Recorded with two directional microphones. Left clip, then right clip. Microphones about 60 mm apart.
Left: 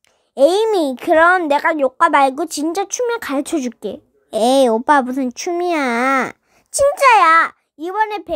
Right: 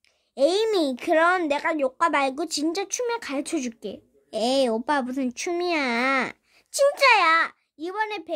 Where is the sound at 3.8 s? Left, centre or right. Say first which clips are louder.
Left 9 dB; left.